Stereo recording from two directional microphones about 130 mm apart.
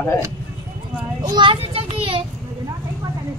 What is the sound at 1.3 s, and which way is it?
Speech, 40° right (ahead or behind).